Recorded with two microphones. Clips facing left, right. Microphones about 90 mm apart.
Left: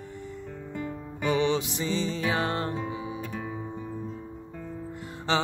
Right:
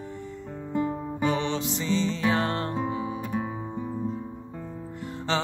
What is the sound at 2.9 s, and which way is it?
Music, 45° right (ahead or behind).